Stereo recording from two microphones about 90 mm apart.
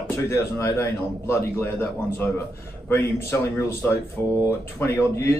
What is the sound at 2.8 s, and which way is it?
Speech, 25° left (ahead or behind).